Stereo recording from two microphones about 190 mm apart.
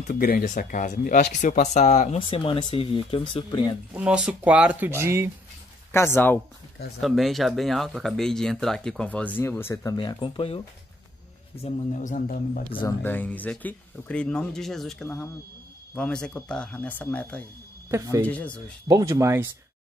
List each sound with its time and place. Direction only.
0.1 s speech: 50° left (ahead or behind); by 3.7 s 25° left (ahead or behind)
3.9 s speech: 5° right (ahead or behind)
5.9 s speech: 15° left (ahead or behind)
7.0 s speech: centre (ahead or behind)
9.9 s speech: 25° left (ahead or behind); by 12.6 s 45° left (ahead or behind)
13.0 s speech: 10° left (ahead or behind)
18.9 s speech: 20° right (ahead or behind)